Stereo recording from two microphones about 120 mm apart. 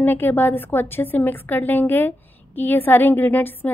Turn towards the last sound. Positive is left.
turn(degrees=15)  # may be behind; listen again after turning